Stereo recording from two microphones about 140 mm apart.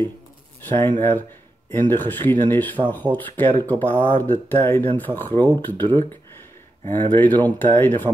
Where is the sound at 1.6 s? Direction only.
15° left (ahead or behind).